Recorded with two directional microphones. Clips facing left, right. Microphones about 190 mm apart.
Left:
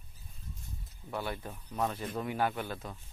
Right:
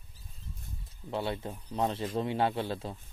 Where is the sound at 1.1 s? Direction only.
25° right (ahead or behind).